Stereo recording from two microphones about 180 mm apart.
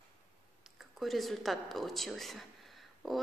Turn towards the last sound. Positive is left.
turn(degrees=0)  # may be behind; listen again after turning